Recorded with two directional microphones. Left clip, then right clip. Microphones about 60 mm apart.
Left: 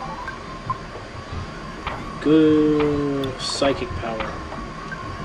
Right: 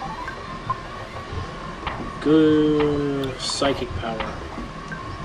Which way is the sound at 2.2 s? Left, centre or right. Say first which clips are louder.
Left 1 dB; centre.